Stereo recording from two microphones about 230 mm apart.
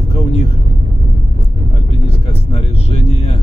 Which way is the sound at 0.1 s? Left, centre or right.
Left.